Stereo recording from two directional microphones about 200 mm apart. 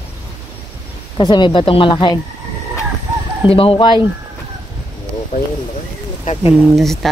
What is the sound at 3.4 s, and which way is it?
Speech, 25° left (ahead or behind).